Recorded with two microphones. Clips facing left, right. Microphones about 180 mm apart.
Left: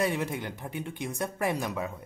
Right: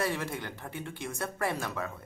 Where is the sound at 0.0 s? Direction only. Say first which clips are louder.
Left 3 dB; 15° left (ahead or behind).